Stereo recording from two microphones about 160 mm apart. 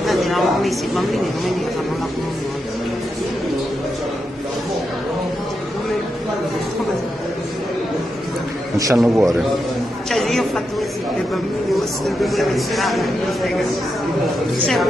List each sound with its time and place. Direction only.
0.0 s speech: centre (ahead or behind)
8.9 s speech: centre (ahead or behind)
10.0 s a sound: centre (ahead or behind)
11.7 s speech: centre (ahead or behind)